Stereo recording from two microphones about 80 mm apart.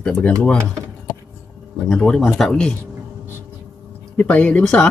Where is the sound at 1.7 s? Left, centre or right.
Centre.